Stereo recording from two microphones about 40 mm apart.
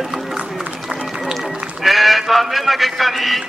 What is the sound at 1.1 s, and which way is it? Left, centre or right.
Music, centre.